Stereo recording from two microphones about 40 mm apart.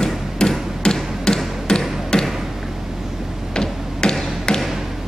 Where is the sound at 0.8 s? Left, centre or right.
Centre.